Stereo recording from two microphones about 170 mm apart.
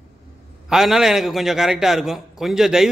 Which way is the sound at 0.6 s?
5° right (ahead or behind).